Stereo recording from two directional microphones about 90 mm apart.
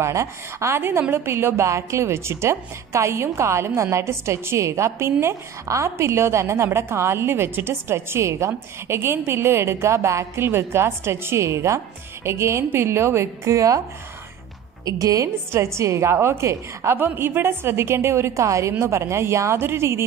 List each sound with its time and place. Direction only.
0.0 s a woman's voice: 35° right (ahead or behind)
14.9 s a woman's voice: 40° right (ahead or behind)